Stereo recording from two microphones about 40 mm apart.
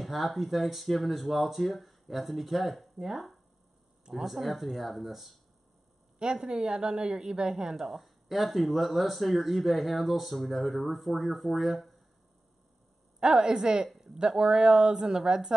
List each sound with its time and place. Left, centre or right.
0.0 s speech: centre
6.1 s speech: centre
13.2 s speech: right